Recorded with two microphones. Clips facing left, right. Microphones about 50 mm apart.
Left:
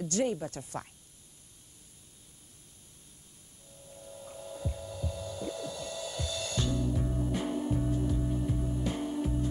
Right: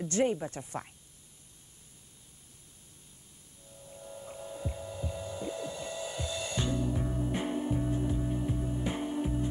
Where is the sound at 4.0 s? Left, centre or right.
Right.